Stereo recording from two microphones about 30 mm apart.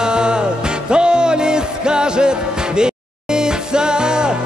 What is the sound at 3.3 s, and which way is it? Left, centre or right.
Music, right.